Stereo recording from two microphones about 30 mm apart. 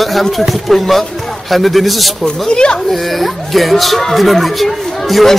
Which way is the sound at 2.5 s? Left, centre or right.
Left.